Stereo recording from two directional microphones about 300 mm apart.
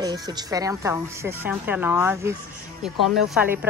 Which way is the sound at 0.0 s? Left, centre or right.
Centre.